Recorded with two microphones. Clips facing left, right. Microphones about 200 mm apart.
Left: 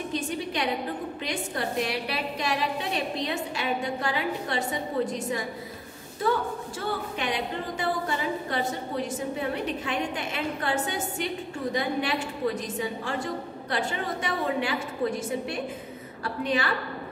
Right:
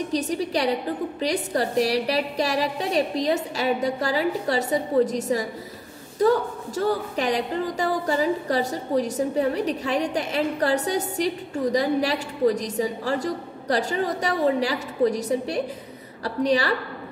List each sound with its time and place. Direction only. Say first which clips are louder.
0.1 s a woman's voice: right 6 dB; 40° right (ahead or behind)